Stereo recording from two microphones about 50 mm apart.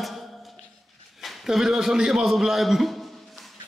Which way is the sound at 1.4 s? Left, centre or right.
Centre.